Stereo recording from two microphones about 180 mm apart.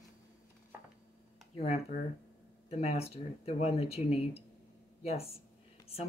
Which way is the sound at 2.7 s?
35° left (ahead or behind).